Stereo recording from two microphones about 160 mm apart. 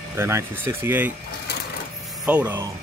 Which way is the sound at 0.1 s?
15° right (ahead or behind).